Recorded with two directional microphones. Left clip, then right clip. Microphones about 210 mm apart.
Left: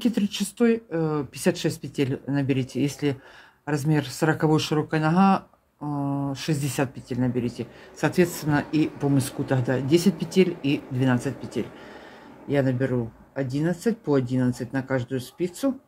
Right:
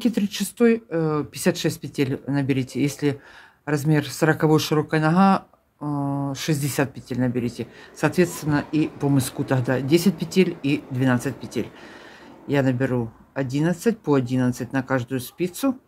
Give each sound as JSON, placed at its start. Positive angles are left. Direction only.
{"t": 0.0, "sound": "speech", "side_deg": -15}
{"t": 9.1, "sound": "speech", "side_deg": -20}